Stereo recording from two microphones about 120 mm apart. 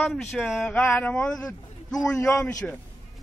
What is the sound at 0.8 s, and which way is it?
Speech, 15° left (ahead or behind).